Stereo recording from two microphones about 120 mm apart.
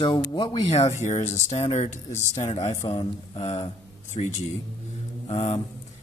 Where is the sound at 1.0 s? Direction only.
75° left (ahead or behind).